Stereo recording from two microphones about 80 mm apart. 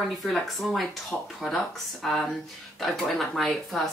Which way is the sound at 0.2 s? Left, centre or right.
Centre.